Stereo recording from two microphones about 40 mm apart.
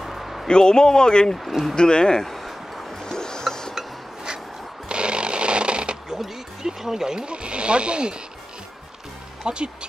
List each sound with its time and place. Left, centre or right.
0.0 s a sound: centre
0.5 s speech: centre
1.3 s speech: centre
1.8 s speech: left
2.2 s a sound: centre
3.0 s music: centre
3.7 s a sound: centre
4.8 s chainsaw: right
6.0 s speech: centre; by 8.2 s right
9.5 s speech: right